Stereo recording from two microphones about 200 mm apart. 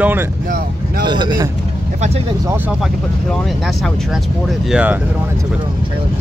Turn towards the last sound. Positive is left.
turn(degrees=-5)  # may be behind; listen again after turning